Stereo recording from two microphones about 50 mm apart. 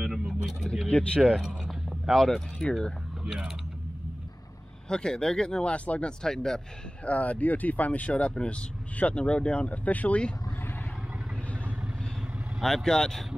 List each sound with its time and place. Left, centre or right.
0.0 s a sound: centre
0.7 s speech: centre
1.6 s a sound: centre
2.1 s speech: centre
4.8 s speech: centre
6.2 s speech: centre
7.1 s speech: left
12.6 s speech: centre